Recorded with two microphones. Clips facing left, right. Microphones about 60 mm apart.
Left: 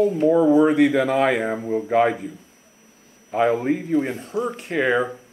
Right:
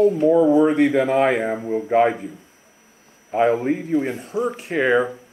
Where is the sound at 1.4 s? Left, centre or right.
Centre.